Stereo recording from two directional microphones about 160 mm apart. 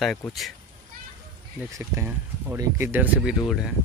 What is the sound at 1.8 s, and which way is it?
Speech, 10° right (ahead or behind).